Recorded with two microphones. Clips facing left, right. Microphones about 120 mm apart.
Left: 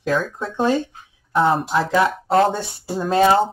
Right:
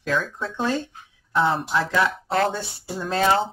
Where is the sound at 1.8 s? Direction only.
30° left (ahead or behind).